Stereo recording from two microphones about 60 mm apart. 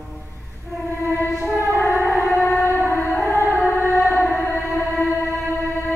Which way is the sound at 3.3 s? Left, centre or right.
Left.